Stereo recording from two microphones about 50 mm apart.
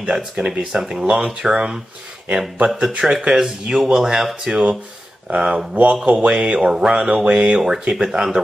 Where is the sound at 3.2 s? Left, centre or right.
Centre.